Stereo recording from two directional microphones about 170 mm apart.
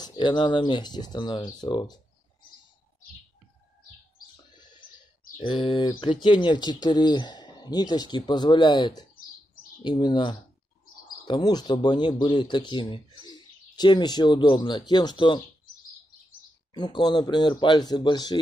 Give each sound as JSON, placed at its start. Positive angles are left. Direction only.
{"t": 0.0, "sound": "speech", "side_deg": 25}
{"t": 5.4, "sound": "speech", "side_deg": 30}
{"t": 16.7, "sound": "speech", "side_deg": 25}